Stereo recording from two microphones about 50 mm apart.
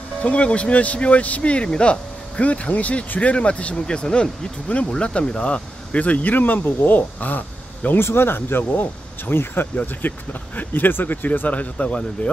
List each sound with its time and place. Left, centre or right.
0.2 s speech: left
8.0 s speech: left
9.8 s speech: left